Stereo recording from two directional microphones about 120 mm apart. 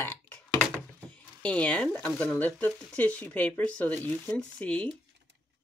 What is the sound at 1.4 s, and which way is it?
Speech, 10° left (ahead or behind).